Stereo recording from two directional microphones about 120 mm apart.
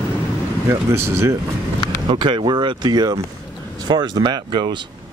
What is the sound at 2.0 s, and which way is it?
Speech, 40° right (ahead or behind).